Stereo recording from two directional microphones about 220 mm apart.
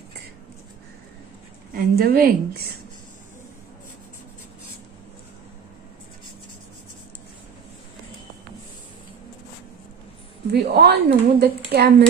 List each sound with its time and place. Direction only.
1.7 s a woman's voice: 45° right (ahead or behind)
10.5 s a woman's voice: 45° right (ahead or behind)